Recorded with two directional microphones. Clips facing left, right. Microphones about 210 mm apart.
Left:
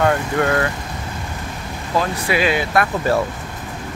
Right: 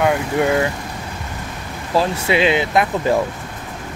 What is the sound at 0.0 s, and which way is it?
Speech, 10° right (ahead or behind).